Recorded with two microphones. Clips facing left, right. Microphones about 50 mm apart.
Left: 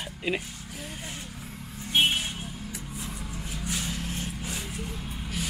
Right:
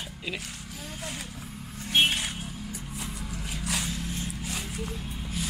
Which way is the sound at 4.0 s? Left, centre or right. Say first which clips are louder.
Even; left.